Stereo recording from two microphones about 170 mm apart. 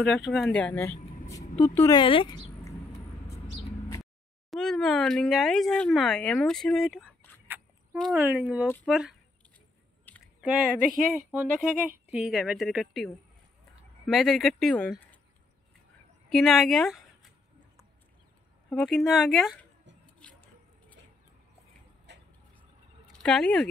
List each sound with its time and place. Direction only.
0.0 s a woman's voice: centre (ahead or behind)
2.0 s speech: 30° left (ahead or behind)
4.0 s speech: centre (ahead or behind)
7.4 s a sound: 10° right (ahead or behind)
8.2 s a woman's voice: 10° right (ahead or behind)
10.2 s a woman's voice: 5° right (ahead or behind)
16.3 s speech: centre (ahead or behind)
18.8 s a woman's voice: centre (ahead or behind)
20.2 s a sound: 5° left (ahead or behind)
22.1 s vehicle: 90° right
23.1 s speech: 5° left (ahead or behind)